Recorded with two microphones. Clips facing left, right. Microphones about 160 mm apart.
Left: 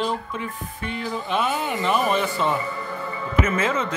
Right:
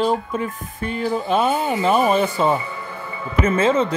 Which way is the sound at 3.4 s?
30° right (ahead or behind).